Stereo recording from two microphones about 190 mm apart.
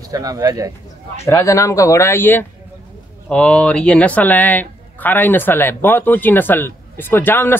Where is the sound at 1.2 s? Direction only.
15° left (ahead or behind).